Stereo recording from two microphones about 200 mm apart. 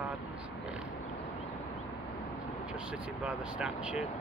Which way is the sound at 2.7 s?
5° right (ahead or behind).